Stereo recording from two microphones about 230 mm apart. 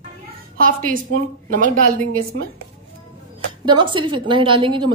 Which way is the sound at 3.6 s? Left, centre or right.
Centre.